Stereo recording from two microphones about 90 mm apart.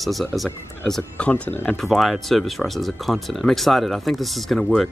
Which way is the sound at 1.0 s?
15° left (ahead or behind).